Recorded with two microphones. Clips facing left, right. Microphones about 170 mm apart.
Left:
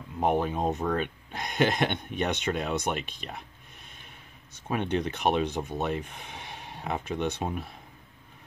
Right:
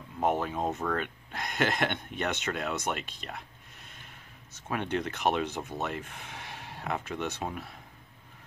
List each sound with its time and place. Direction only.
0.2 s speech: 20° left (ahead or behind)
4.6 s speech: 20° left (ahead or behind)